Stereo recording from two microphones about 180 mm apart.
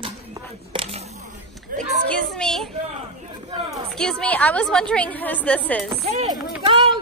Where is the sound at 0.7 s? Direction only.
35° right (ahead or behind).